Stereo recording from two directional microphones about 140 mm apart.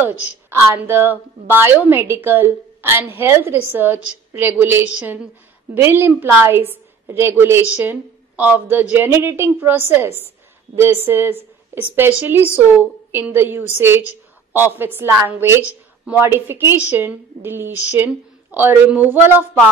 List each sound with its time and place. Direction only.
0.0 s a woman's voice: 15° right (ahead or behind)